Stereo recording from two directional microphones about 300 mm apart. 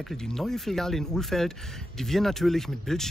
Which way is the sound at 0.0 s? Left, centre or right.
Centre.